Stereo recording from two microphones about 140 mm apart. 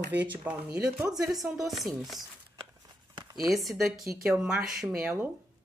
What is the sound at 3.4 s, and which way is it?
Speech, centre (ahead or behind).